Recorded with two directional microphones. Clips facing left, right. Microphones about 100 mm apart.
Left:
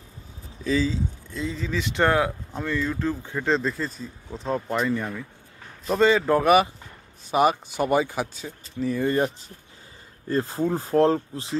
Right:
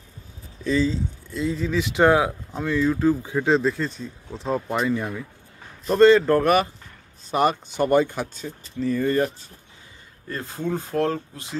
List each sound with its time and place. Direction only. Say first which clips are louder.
0.7 s speech: right 2 dB; 5° left (ahead or behind)
10.2 s speech: left 5 dB; 30° left (ahead or behind)